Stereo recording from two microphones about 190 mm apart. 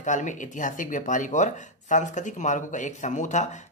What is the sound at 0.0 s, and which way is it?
Speech, 40° left (ahead or behind).